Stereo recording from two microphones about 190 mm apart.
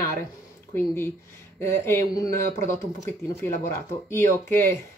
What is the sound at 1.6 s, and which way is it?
Speech, 15° left (ahead or behind).